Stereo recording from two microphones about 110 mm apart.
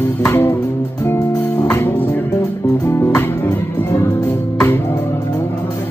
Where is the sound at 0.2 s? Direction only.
25° left (ahead or behind).